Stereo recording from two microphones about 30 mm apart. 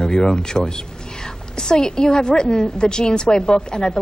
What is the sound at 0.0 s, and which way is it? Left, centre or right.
A woman's voice, centre.